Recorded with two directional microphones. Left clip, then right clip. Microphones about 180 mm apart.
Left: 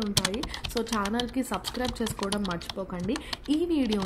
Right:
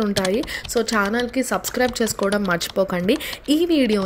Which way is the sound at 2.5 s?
35° right (ahead or behind).